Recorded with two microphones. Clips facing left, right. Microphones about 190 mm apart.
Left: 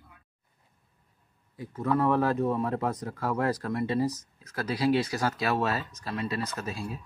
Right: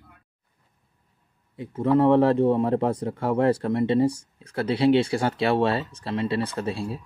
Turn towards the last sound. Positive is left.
turn(degrees=-30)  # may be behind; listen again after turning